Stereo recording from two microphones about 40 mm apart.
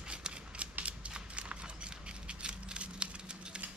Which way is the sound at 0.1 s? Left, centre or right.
Right.